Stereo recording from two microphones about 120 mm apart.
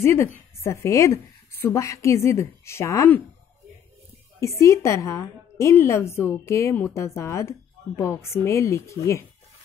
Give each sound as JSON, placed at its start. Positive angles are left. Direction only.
{"t": 0.0, "sound": "a woman's voice", "side_deg": 25}
{"t": 4.4, "sound": "a woman's voice", "side_deg": 25}